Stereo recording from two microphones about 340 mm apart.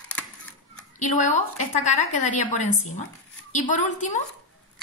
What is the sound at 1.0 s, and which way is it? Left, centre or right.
A woman's voice, left.